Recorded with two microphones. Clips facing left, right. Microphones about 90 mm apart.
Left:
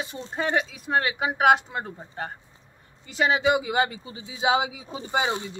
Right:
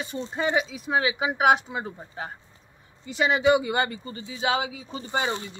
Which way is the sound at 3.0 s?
Centre (ahead or behind).